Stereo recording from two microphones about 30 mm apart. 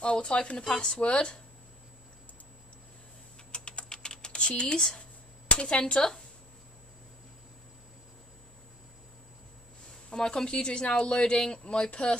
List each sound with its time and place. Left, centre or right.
0.0 s speech: left
0.7 s speech: left
1.1 s speech: left
3.5 s typing: left
4.5 s speech: left
4.7 s speech: left
5.5 s speech: left
9.8 s a sound: left
10.7 s speech: left
11.3 s speech: left
11.6 s speech: left